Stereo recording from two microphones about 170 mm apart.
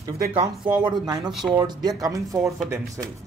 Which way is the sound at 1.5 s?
20° right (ahead or behind).